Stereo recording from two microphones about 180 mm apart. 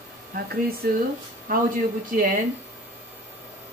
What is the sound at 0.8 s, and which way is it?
Speech, 55° right (ahead or behind).